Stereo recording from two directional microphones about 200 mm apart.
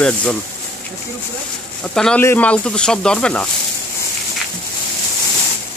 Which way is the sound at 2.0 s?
5° left (ahead or behind).